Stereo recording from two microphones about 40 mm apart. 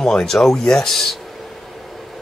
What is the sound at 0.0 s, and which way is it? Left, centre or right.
Speech, centre.